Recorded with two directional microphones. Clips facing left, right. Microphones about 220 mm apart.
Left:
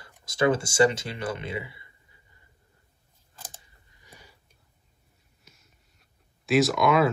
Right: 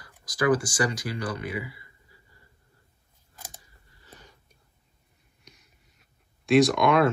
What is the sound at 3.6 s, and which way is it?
Scissors, 15° left (ahead or behind).